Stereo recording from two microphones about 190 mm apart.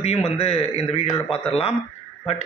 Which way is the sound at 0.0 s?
35° left (ahead or behind).